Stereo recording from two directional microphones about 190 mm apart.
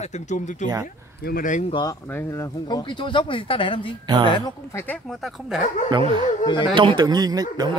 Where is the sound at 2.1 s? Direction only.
15° left (ahead or behind).